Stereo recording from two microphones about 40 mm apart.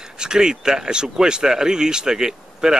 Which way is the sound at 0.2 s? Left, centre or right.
Centre.